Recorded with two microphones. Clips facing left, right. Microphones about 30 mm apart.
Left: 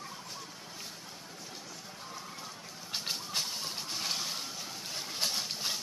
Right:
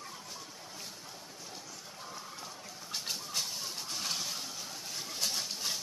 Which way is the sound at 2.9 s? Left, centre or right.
Left.